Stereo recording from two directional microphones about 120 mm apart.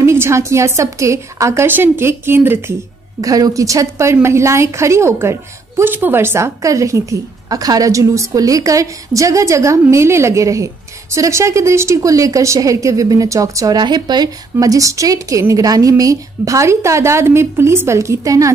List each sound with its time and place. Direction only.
0.0 s a woman's voice: 20° right (ahead or behind)
3.2 s a woman's voice: 30° right (ahead or behind)